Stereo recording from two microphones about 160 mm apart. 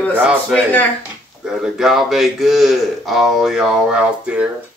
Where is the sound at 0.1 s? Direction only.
5° right (ahead or behind).